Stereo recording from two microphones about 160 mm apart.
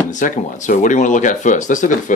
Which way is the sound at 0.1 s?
50° left (ahead or behind).